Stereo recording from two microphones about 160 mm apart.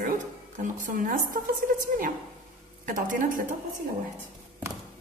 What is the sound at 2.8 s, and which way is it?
Speech, 55° right (ahead or behind).